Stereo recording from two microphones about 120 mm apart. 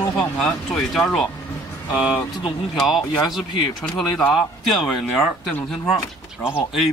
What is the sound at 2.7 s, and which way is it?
Speech, centre (ahead or behind).